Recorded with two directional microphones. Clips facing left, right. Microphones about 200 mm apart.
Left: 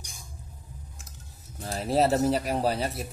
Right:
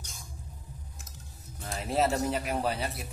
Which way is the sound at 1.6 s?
35° left (ahead or behind).